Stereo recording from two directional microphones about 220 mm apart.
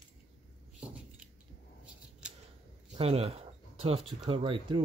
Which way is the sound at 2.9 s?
30° right (ahead or behind).